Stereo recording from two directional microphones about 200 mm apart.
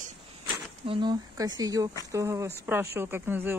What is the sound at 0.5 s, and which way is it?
Speech, 25° right (ahead or behind).